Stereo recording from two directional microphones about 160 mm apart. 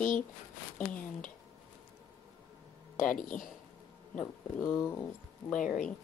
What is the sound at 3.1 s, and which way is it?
Speech, 55° left (ahead or behind).